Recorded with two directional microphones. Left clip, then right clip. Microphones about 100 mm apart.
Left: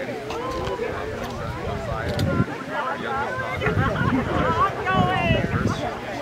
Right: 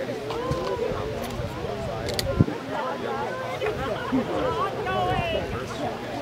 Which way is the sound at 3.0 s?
35° left (ahead or behind).